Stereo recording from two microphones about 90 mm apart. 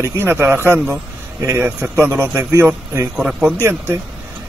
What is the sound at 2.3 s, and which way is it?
Speech, 25° right (ahead or behind).